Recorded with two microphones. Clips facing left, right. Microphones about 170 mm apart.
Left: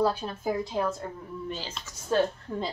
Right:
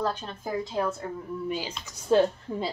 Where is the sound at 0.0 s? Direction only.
10° left (ahead or behind).